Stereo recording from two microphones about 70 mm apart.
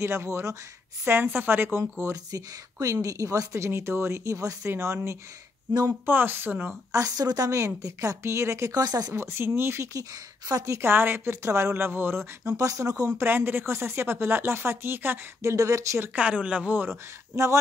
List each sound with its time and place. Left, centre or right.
0.0 s speech: right
2.3 s speech: right
5.7 s speech: right
6.0 s speech: right
6.9 s speech: right
9.1 s speech: right
11.7 s speech: right
12.5 s speech: right
13.2 s speech: right
15.4 s speech: right
16.2 s speech: centre